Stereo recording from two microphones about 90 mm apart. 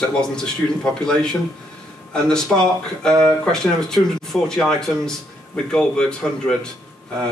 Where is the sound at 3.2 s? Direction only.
10° left (ahead or behind).